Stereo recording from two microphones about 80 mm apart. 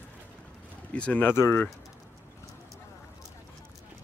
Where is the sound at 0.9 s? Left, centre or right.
Centre.